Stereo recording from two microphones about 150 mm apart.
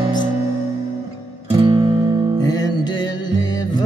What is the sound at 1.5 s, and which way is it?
Music, 35° right (ahead or behind).